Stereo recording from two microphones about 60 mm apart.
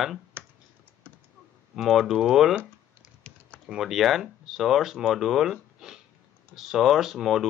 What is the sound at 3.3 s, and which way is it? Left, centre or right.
Typing, centre.